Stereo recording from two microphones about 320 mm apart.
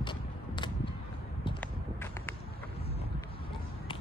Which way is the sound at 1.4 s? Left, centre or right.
Centre.